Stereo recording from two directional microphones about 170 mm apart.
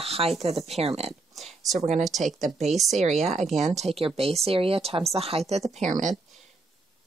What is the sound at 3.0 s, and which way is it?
Speech, 40° right (ahead or behind).